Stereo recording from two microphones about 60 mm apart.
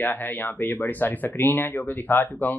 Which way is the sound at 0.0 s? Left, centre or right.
Left.